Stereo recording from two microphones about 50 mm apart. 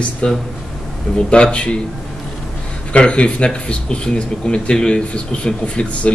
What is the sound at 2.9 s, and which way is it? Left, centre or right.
Speech, left.